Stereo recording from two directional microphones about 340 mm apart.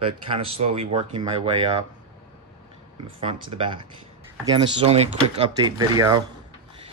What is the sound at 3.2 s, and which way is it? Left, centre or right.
Speech, centre.